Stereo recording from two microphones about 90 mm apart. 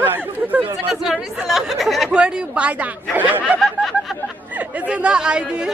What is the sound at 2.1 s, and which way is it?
Speech, 10° right (ahead or behind).